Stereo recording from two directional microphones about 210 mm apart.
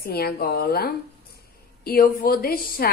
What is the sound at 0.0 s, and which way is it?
A woman's voice, 50° left (ahead or behind).